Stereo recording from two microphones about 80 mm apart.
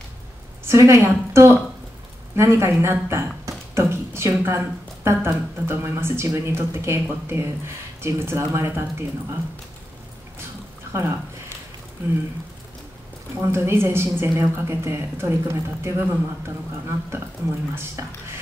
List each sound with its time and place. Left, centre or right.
0.7 s speech: right
10.9 s speech: right
13.4 s speech: right